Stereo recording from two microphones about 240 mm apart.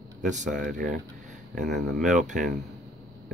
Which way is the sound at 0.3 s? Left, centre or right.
Right.